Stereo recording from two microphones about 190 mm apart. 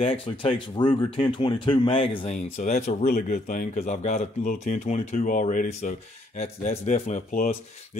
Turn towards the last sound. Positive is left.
turn(degrees=40)  # may be behind; listen again after turning